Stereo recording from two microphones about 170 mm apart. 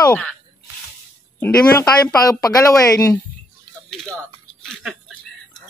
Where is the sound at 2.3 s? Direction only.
20° left (ahead or behind).